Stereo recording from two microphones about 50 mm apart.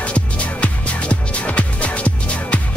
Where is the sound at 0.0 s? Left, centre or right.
Left.